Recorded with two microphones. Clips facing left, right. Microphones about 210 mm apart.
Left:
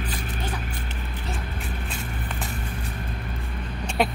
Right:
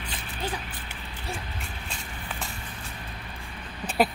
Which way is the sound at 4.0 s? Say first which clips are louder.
Even; centre (ahead or behind).